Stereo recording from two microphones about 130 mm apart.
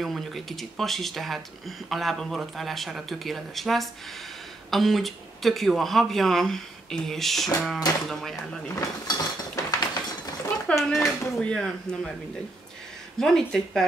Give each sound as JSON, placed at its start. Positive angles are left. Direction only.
{"t": 0.0, "sound": "speech", "side_deg": 0}
{"t": 8.7, "sound": "cutlery", "side_deg": 30}
{"t": 10.5, "sound": "a sound", "side_deg": 0}
{"t": 11.3, "sound": "speech", "side_deg": 5}
{"t": 13.2, "sound": "speech", "side_deg": 5}